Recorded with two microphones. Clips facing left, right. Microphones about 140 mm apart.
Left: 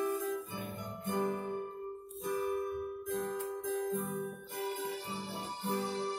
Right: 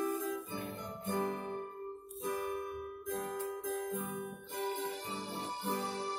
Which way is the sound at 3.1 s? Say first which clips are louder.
Left 1 dB; centre (ahead or behind).